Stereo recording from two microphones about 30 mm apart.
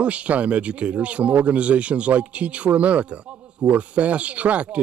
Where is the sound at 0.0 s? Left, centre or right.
Right.